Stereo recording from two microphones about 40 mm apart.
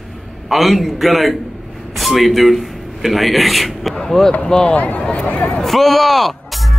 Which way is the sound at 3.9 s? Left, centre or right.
Centre.